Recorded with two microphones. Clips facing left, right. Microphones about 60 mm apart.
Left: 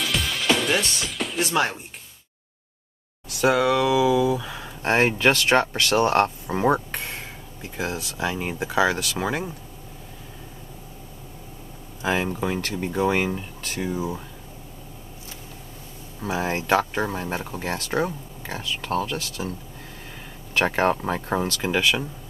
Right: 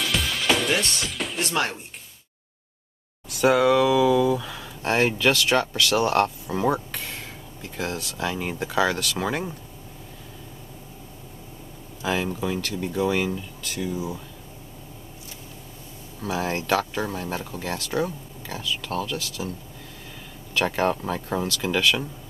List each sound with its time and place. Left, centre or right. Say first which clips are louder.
0.0 s music: even; centre
3.3 s speech: right 1 dB; centre
4.8 s speech: left 2 dB; left
7.2 s speech: left 1 dB; centre
12.0 s speech: left 2 dB; left
16.2 s speech: left 1 dB; left
20.5 s speech: left 2 dB; left
21.7 s speech: even; centre